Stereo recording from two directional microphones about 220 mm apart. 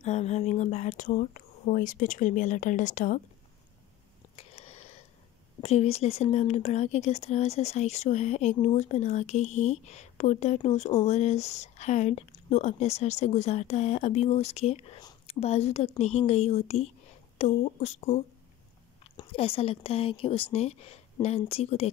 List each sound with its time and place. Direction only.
0.0 s speech: 30° left (ahead or behind)
4.4 s a sound: 25° left (ahead or behind)
5.6 s speech: 30° left (ahead or behind)